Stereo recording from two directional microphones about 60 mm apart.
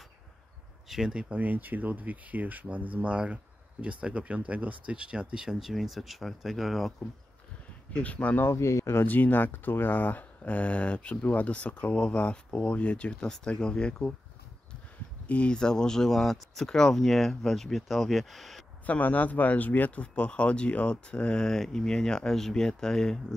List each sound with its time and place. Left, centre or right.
0.8 s speech: centre
1.3 s speech: right; by 6.9 s centre
7.9 s speech: left
8.5 s speech: left
9.0 s speech: left
15.2 s speech: centre
18.9 s speech: left; by 23.2 s centre